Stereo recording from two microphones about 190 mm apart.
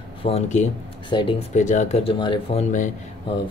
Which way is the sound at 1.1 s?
25° left (ahead or behind).